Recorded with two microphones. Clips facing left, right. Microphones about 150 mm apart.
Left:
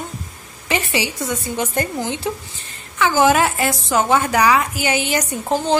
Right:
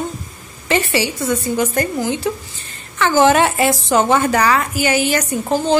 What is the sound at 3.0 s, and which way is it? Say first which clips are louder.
Speech: right 2 dB; 10° left (ahead or behind).